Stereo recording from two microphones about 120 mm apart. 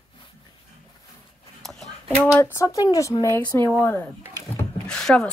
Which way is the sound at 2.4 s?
25° left (ahead or behind).